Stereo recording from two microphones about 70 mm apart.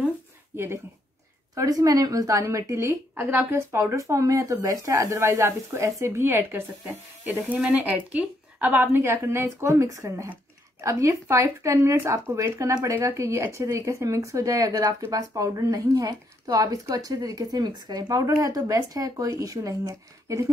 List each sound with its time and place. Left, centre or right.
1.5 s speech: right
7.5 s a woman's voice: centre; by 18.2 s right
18.3 s speech: right